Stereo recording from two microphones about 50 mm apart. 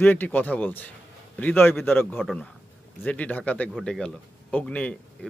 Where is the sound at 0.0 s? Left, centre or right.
Left.